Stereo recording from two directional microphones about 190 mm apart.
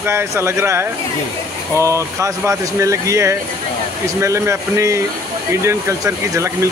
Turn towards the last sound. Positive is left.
turn(degrees=-15)  # may be behind; listen again after turning